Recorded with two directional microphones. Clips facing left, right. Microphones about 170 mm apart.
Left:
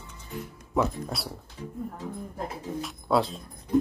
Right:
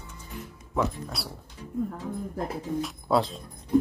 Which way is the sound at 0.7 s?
Centre (ahead or behind).